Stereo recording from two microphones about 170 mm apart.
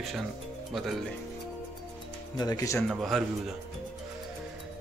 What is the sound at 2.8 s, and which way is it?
Speech, centre (ahead or behind).